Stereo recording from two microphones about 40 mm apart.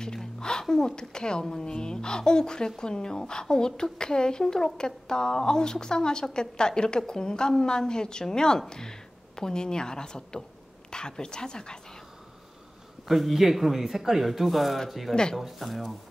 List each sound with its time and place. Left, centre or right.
0.0 s a woman's voice: centre
13.1 s speech: centre